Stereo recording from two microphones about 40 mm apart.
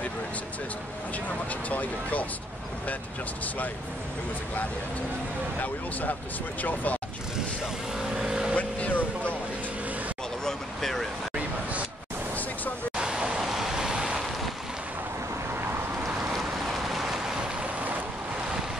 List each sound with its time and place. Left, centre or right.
1.5 s speech: left
5.6 s speech: left
7.3 s vehicle: centre
8.5 s vehicle: left
10.4 s vehicle: centre
12.9 s vehicle: right